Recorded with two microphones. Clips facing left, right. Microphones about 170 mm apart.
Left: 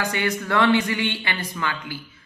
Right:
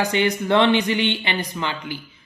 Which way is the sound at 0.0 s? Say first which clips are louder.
Right 4 dB; 20° right (ahead or behind).